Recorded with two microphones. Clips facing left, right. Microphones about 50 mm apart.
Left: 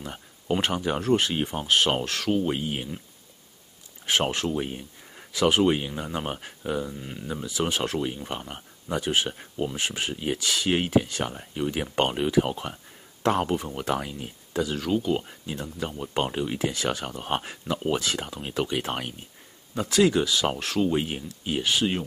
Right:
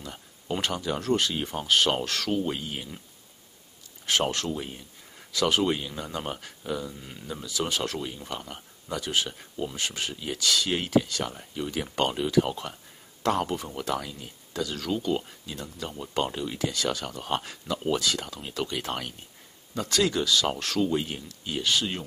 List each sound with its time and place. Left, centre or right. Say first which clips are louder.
0.0 s speech: left 3 dB; left
1.5 s speech: even; centre
4.0 s speech: left 2 dB; centre
7.0 s speech: left 4 dB; centre